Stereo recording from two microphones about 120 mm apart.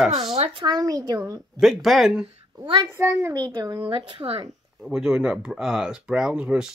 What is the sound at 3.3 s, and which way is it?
Speech, 35° right (ahead or behind).